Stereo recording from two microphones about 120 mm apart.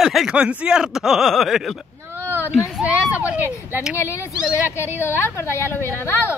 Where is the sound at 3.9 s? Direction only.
25° left (ahead or behind).